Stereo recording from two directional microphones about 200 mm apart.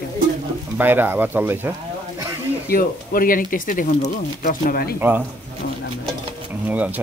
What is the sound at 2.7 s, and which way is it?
Speech, 45° left (ahead or behind).